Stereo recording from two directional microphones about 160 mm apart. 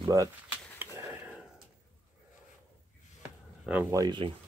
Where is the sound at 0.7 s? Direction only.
10° right (ahead or behind).